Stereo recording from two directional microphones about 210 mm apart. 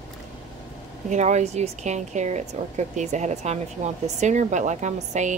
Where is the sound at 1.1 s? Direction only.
35° right (ahead or behind).